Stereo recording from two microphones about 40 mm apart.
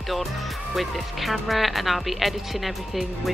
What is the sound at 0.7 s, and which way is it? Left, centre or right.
Speech, centre.